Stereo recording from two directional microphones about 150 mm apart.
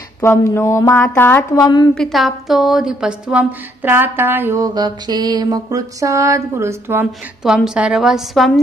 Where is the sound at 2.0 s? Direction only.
Centre (ahead or behind); by 4.6 s 15° right (ahead or behind).